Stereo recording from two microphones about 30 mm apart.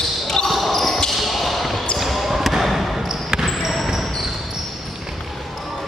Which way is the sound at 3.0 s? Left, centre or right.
Centre.